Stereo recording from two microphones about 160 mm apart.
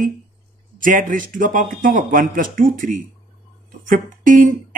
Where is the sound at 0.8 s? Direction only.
55° right (ahead or behind).